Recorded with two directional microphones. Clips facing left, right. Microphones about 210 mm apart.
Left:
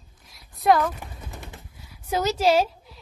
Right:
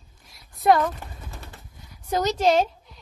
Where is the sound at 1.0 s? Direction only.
20° left (ahead or behind).